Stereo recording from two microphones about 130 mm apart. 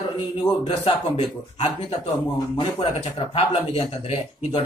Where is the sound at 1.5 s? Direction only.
55° left (ahead or behind).